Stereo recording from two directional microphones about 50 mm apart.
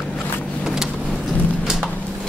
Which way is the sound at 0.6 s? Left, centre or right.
Centre.